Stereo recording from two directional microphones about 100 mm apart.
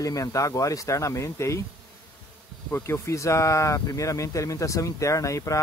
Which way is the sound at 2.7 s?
25° left (ahead or behind).